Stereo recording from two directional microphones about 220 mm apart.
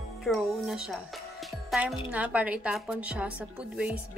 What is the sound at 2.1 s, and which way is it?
A woman's voice, 5° right (ahead or behind).